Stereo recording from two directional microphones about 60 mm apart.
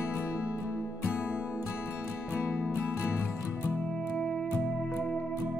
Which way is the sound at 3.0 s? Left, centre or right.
Centre.